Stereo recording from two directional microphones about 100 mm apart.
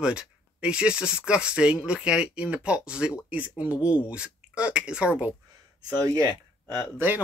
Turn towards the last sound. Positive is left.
turn(degrees=-20)  # may be behind; listen again after turning